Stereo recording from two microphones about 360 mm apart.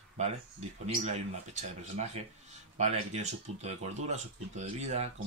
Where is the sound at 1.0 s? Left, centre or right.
Centre.